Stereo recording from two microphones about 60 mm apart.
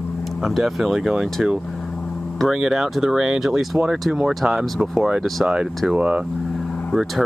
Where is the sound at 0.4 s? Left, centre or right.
Centre.